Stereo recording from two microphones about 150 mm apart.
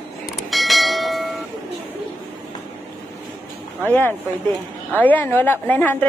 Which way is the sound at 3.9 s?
15° left (ahead or behind).